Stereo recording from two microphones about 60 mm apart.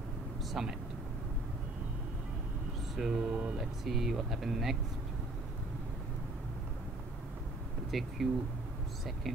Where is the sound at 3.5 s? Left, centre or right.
Centre.